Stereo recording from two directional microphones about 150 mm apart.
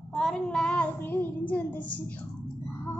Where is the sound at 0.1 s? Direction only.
5° left (ahead or behind).